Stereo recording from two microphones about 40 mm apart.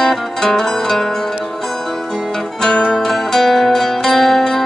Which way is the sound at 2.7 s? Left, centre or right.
Centre.